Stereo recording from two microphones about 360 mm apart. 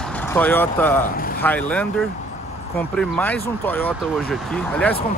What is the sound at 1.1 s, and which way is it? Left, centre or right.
Vehicle, left.